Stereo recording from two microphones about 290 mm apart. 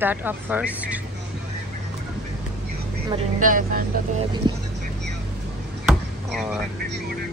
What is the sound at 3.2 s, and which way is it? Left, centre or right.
Speech, right.